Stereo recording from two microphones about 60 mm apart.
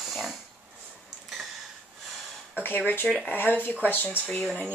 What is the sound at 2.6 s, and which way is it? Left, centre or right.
Speech, left.